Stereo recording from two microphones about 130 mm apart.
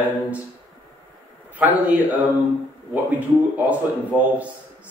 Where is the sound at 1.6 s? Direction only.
15° right (ahead or behind).